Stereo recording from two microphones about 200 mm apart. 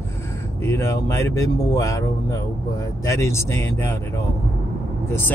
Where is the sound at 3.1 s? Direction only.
15° left (ahead or behind).